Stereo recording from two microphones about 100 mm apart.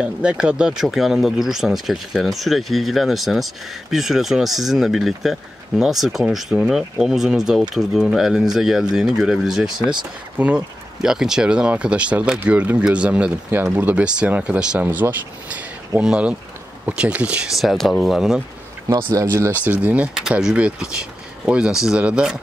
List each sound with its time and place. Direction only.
0.0 s speech: 10° right (ahead or behind)
17.6 s speech: centre (ahead or behind)
19.1 s speech: 25° right (ahead or behind)
19.6 s speech: 15° right (ahead or behind)